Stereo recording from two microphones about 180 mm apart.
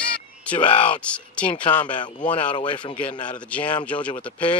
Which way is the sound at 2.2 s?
25° left (ahead or behind).